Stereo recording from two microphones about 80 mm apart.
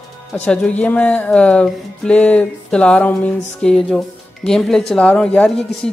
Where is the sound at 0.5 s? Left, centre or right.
Centre.